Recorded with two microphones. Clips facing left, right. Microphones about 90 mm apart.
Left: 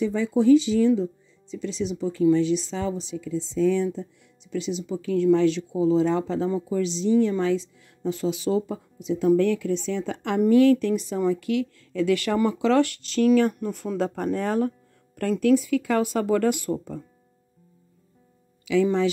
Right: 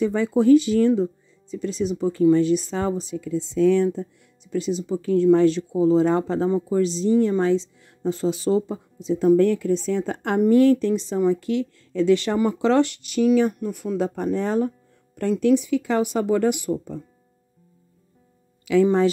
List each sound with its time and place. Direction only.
0.0 s speech: 55° right (ahead or behind); by 16.7 s 20° right (ahead or behind)
18.7 s speech: 40° right (ahead or behind)